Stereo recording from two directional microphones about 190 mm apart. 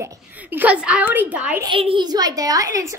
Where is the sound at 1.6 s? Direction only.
25° right (ahead or behind).